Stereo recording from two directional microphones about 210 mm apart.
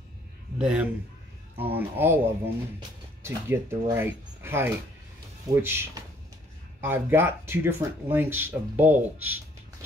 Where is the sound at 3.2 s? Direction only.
10° right (ahead or behind).